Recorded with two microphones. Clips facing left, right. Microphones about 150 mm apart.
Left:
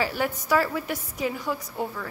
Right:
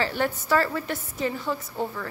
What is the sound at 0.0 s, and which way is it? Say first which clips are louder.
A woman's voice: right 1 dB; 10° left (ahead or behind).